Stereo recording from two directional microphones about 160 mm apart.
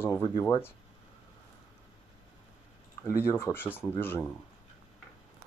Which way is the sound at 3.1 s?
15° left (ahead or behind).